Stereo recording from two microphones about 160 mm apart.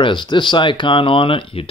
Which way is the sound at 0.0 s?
30° left (ahead or behind).